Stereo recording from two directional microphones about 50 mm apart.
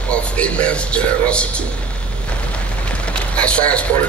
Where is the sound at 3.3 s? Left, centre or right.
Left.